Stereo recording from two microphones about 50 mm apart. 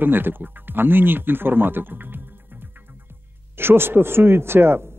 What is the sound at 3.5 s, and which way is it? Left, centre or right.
Speech, right.